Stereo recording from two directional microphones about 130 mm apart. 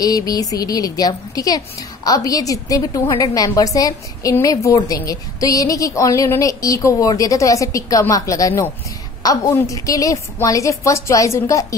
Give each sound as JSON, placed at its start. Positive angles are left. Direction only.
{"t": 0.0, "sound": "a woman's voice", "side_deg": 30}